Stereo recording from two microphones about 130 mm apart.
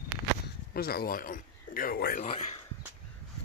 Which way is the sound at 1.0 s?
90° left.